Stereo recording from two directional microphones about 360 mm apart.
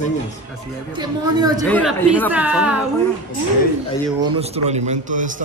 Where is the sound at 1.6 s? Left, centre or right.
Centre.